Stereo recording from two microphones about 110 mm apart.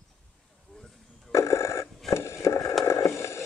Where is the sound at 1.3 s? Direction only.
25° left (ahead or behind).